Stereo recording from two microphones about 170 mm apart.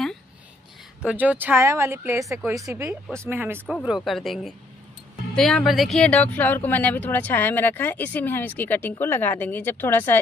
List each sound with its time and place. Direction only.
1.0 s speech: 10° right (ahead or behind)
3.6 s speech: centre (ahead or behind)